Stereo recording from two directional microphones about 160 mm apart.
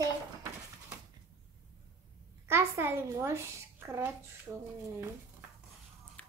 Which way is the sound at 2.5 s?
15° right (ahead or behind).